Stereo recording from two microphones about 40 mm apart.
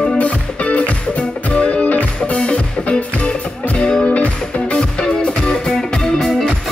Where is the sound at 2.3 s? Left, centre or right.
Left.